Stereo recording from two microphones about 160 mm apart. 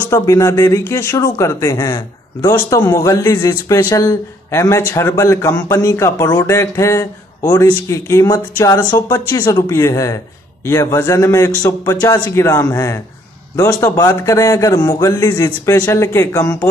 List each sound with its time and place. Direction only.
0.1 s a man's voice: 20° left (ahead or behind)